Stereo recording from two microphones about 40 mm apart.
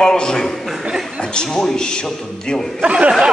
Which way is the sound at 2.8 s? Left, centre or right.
Right.